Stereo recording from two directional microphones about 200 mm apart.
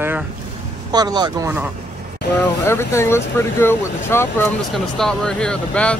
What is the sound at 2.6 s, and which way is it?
Speech, 15° left (ahead or behind).